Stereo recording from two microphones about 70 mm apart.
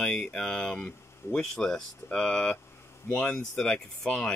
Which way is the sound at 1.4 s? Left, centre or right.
Centre.